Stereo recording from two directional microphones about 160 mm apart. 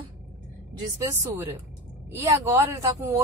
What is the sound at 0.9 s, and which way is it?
A woman's voice, 15° right (ahead or behind).